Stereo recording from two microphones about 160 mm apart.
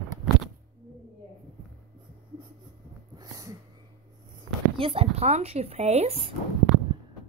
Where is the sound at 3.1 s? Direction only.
20° right (ahead or behind).